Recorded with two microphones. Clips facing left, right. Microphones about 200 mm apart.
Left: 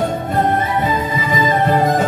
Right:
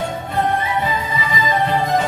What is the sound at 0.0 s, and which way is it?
Music, 50° left (ahead or behind).